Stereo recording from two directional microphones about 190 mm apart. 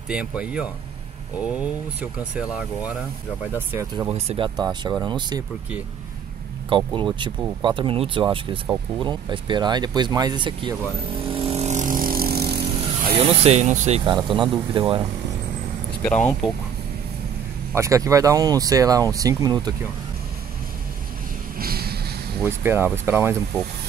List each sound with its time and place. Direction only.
0.1 s speech: 5° right (ahead or behind)
4.1 s speech: 30° right (ahead or behind)
4.6 s speech: 20° right (ahead or behind)
6.7 s speech: 25° right (ahead or behind)
11.3 s vehicle: 30° right (ahead or behind); by 12.6 s 55° right (ahead or behind)
13.1 s speech: 30° right (ahead or behind)
14.5 s speech: 25° right (ahead or behind)
16.0 s speech: 5° left (ahead or behind)
17.7 s speech: 15° right (ahead or behind)
21.5 s a sound: 55° right (ahead or behind)
22.4 s speech: 10° right (ahead or behind)